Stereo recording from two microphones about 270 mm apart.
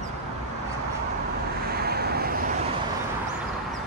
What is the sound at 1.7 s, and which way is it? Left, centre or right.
Vehicle, right.